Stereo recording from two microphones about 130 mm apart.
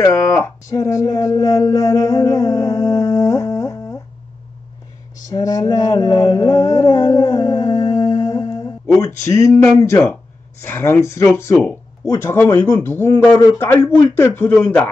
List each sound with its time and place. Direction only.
0.0 s speech: 20° left (ahead or behind)
5.3 s a sound: 30° left (ahead or behind)
10.6 s speech: 15° left (ahead or behind)